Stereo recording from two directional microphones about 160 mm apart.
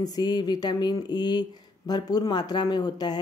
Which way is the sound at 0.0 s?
25° left (ahead or behind).